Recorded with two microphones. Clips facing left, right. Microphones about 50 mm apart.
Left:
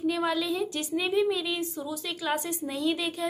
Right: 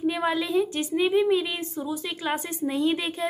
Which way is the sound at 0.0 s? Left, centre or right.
Right.